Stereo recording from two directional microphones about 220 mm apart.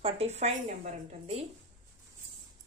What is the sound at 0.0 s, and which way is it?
Speech, 30° right (ahead or behind).